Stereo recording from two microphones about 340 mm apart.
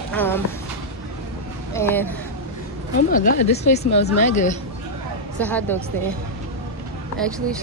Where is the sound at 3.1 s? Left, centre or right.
Left.